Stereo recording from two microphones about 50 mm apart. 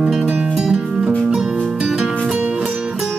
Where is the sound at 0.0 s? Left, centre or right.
Centre.